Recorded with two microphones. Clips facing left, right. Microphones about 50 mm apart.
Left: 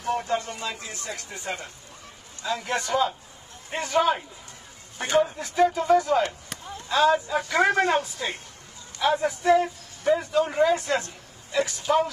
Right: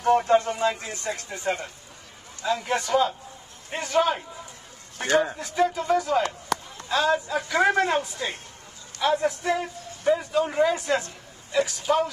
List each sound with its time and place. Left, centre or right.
0.5 s a sound: centre
1.0 s speech: centre
5.0 s speech: right
5.4 s speech: centre